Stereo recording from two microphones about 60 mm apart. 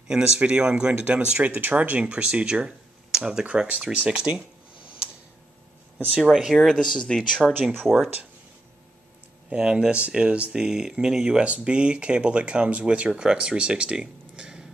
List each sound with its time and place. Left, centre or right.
0.1 s speech: centre
1.4 s speech: right
5.9 s speech: right
6.2 s speech: centre
6.5 s speech: centre
9.5 s speech: centre